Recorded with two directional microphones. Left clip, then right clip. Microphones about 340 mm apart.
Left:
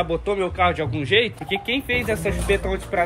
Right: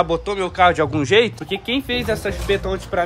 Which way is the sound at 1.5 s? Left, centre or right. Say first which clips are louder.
Right 1 dB; centre.